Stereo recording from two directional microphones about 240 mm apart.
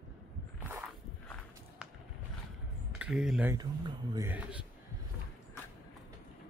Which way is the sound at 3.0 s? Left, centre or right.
Centre.